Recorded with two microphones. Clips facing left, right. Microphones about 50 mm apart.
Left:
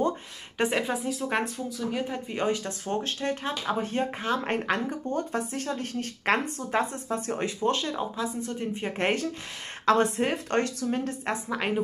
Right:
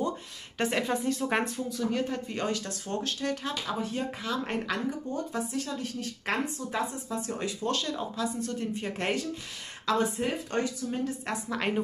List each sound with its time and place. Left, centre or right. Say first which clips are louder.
0.6 s speech: left 2 dB; centre
8.9 s speech: left 6 dB; left
9.8 s a woman's voice: left 5 dB; left
11.5 s a woman's voice: even; centre